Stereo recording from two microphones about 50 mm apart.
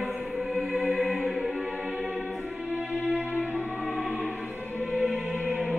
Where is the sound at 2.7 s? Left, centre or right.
Right.